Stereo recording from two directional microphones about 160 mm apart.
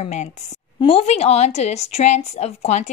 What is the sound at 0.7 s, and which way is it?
A woman's voice, 35° left (ahead or behind).